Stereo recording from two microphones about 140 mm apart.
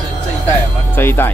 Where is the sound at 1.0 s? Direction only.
15° left (ahead or behind).